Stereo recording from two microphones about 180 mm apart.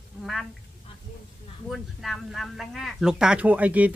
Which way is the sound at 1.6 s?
Centre (ahead or behind).